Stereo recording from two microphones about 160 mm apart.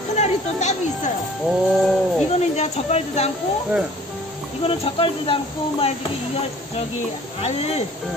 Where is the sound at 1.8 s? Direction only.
Centre (ahead or behind).